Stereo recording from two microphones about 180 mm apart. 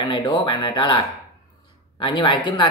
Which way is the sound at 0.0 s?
25° left (ahead or behind).